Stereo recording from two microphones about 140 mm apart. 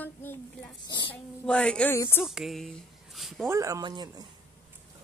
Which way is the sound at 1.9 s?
20° left (ahead or behind).